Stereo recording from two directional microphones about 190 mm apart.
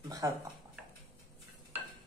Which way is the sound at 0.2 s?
15° right (ahead or behind).